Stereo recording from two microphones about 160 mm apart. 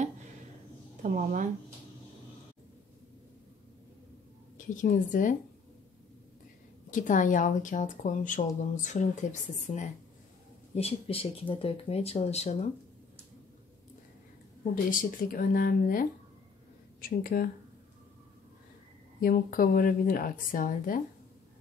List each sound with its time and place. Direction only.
1.0 s speech: 55° right (ahead or behind)
4.6 s speech: 50° left (ahead or behind)
6.9 s speech: 55° left (ahead or behind)
14.6 s speech: 60° left (ahead or behind)
19.2 s speech: 65° left (ahead or behind)